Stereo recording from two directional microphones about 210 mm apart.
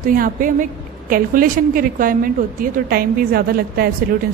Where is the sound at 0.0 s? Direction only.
40° right (ahead or behind).